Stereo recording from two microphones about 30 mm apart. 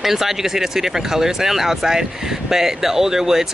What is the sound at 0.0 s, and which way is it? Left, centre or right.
Speech, centre.